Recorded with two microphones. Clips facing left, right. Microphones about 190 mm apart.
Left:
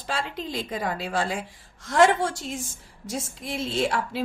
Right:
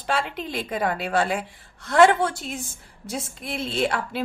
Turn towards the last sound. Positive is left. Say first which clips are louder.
# right 1 dB
turn(degrees=-60)  # may be behind; listen again after turning